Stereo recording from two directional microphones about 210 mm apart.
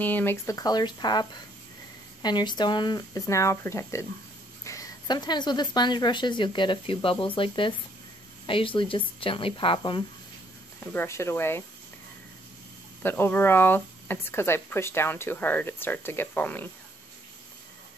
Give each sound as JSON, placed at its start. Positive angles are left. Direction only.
{"t": 0.0, "sound": "speech", "side_deg": 10}
{"t": 2.2, "sound": "a woman's voice", "side_deg": 20}
{"t": 10.9, "sound": "speech", "side_deg": 10}
{"t": 13.0, "sound": "speech", "side_deg": 10}